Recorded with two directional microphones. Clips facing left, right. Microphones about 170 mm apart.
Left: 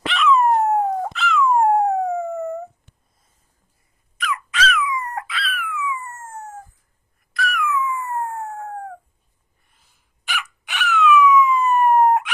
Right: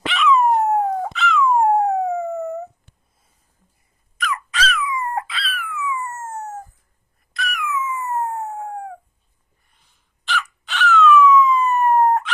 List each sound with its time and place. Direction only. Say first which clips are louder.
0.0 s dog: even; centre (ahead or behind)
4.2 s a sound: left 1 dB; 40° right (ahead or behind)
7.3 s dog: left 3 dB; 20° right (ahead or behind)
9.8 s dog: even; 5° left (ahead or behind)